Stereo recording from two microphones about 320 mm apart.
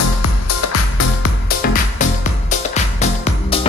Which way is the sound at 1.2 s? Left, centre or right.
Left.